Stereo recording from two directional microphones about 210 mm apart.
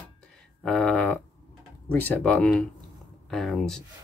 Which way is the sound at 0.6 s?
5° left (ahead or behind).